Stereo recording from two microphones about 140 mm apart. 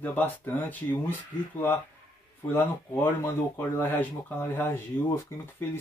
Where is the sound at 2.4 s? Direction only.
15° left (ahead or behind).